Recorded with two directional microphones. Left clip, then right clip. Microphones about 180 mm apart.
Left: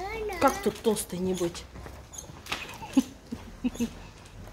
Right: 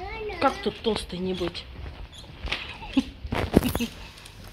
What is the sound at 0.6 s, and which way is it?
Speech, 20° left (ahead or behind).